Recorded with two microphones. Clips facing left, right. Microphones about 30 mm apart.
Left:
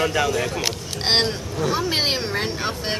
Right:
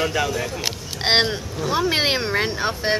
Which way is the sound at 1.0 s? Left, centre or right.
Centre.